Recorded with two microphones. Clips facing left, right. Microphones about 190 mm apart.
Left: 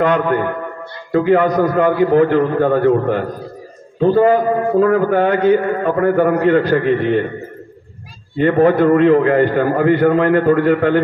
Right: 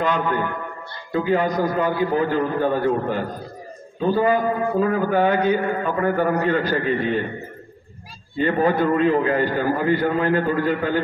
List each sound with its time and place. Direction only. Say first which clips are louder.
0.0 s a man's voice: left 7 dB; 65° left (ahead or behind)
8.4 s a man's voice: left 7 dB; 60° left (ahead or behind)